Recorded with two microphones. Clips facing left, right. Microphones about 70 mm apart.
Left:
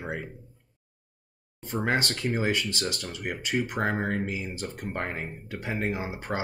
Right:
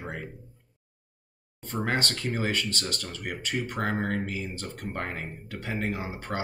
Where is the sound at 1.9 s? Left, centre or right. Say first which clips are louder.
Left 2 dB; centre.